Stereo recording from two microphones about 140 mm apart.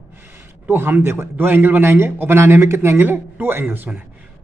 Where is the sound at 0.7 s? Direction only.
15° right (ahead or behind).